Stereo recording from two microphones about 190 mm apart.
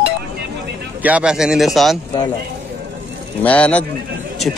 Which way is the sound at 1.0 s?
5° right (ahead or behind).